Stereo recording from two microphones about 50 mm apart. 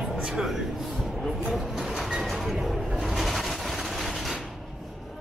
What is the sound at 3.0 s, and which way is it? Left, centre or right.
Rub, centre.